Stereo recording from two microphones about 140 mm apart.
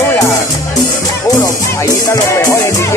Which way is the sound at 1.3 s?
25° left (ahead or behind).